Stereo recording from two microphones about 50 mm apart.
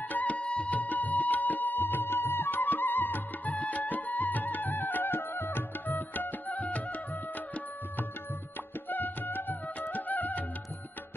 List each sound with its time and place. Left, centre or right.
0.1 s music: left
3.5 s music: left
8.8 s music: left